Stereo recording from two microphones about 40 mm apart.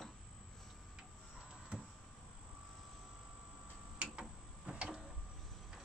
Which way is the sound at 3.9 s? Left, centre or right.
Right.